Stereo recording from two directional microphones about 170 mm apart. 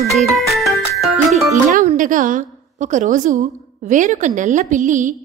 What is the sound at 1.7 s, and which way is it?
A woman's voice, 50° right (ahead or behind).